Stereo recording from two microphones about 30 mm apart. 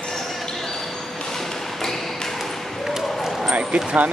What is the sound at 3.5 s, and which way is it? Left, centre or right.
Speech, right.